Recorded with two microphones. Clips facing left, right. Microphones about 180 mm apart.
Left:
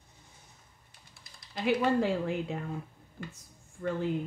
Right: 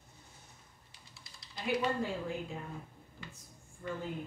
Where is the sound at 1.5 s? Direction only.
80° left.